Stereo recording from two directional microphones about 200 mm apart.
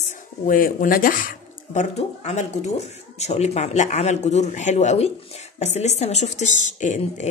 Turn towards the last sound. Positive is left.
turn(degrees=35)  # may be behind; listen again after turning